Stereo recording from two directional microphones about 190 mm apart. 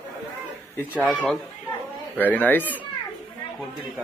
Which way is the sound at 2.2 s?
10° left (ahead or behind).